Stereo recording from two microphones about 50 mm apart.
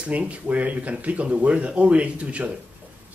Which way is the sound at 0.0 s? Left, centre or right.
Right.